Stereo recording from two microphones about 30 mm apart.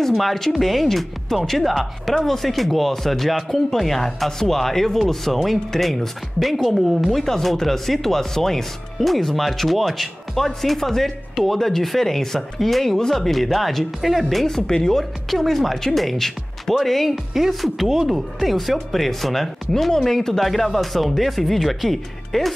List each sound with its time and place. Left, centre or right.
0.2 s speech: centre
14.7 s speech: left
15.0 s speech: centre
17.1 s speech: centre